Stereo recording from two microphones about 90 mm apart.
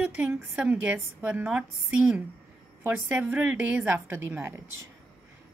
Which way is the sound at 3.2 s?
10° right (ahead or behind).